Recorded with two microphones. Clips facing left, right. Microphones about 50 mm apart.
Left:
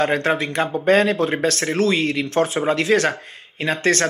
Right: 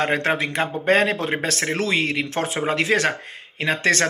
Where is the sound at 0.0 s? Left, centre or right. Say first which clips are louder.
Left 2 dB; right.